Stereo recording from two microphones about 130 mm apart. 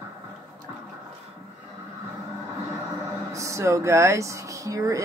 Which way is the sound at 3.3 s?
25° right (ahead or behind).